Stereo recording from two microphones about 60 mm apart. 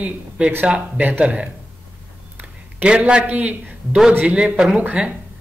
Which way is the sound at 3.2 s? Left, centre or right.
Right.